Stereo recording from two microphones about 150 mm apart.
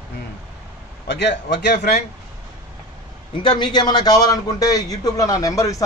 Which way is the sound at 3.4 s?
30° left (ahead or behind).